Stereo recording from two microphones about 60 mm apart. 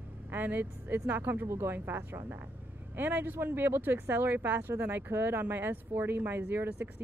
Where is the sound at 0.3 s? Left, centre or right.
Right.